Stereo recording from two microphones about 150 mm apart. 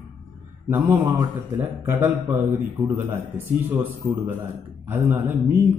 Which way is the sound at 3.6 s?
10° right (ahead or behind).